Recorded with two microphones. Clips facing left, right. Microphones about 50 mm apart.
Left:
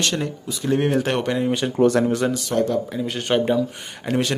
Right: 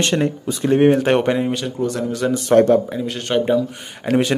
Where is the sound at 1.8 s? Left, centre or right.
Left.